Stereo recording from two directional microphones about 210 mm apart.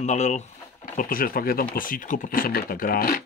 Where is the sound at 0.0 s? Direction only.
35° left (ahead or behind).